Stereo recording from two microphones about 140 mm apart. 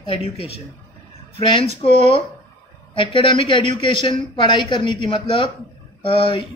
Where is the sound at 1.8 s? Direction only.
40° left (ahead or behind).